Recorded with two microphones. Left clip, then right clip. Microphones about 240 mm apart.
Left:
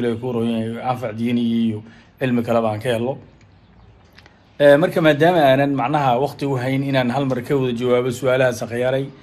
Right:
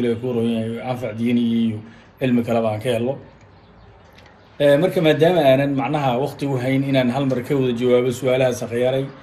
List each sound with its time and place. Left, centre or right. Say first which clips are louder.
0.0 s speech: right 1 dB; left
4.6 s speech: left 3 dB; left